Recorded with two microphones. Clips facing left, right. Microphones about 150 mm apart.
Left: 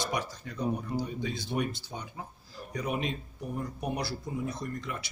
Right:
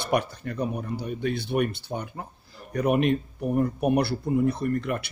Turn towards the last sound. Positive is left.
turn(degrees=-60)  # may be behind; listen again after turning